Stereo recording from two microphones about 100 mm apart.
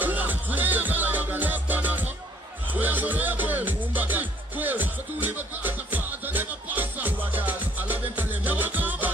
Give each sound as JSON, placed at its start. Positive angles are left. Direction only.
{"t": 0.0, "sound": "music", "side_deg": -20}